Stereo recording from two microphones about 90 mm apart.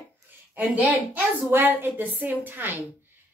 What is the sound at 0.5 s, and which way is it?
A woman's voice, 15° right (ahead or behind).